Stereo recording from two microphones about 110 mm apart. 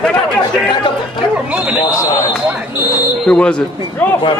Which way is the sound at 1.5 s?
15° right (ahead or behind).